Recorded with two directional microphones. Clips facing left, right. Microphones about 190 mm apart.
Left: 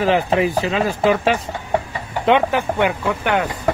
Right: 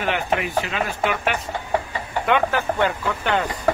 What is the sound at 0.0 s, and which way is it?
Speech, 30° left (ahead or behind).